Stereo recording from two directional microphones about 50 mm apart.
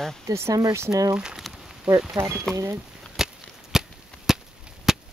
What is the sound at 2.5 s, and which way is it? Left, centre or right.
Speech, centre.